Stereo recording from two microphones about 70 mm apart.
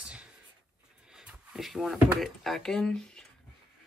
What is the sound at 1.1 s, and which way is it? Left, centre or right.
Drawer open or close, centre.